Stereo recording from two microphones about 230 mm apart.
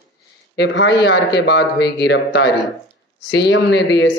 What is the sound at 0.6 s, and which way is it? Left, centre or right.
Speech, left.